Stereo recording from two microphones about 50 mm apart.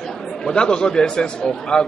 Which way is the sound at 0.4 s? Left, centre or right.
Centre.